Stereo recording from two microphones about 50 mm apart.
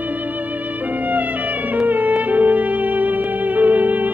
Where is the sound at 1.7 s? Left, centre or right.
Right.